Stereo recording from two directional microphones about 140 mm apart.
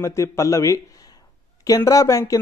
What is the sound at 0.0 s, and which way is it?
A man's voice, 20° left (ahead or behind).